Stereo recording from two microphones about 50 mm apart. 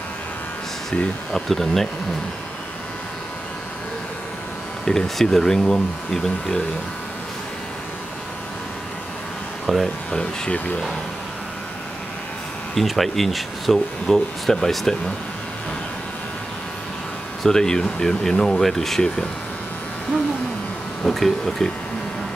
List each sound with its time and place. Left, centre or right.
1.3 s speech: centre
4.8 s speech: centre
9.7 s speech: centre
12.7 s speech: centre
17.4 s speech: centre
21.0 s speech: centre